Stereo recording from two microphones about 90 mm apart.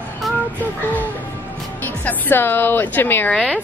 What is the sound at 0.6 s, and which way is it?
A woman's voice, 20° left (ahead or behind).